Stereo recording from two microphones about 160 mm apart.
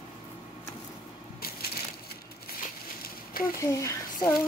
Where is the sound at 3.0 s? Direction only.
65° left (ahead or behind).